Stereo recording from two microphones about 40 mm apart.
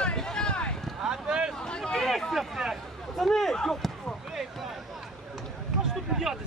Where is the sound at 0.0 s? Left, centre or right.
Centre.